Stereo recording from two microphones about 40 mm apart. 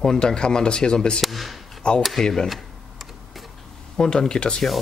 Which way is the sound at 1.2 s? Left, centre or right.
Centre.